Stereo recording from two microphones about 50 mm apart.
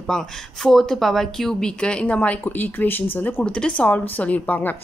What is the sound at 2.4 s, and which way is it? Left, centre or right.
A woman's voice, left.